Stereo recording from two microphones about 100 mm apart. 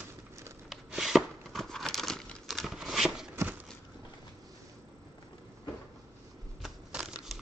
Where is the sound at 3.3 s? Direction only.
25° right (ahead or behind).